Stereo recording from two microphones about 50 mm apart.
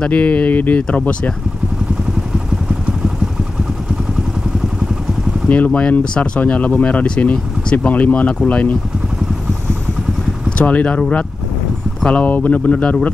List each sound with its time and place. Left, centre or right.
0.0 s speech: left
5.5 s speech: left
10.6 s speech: left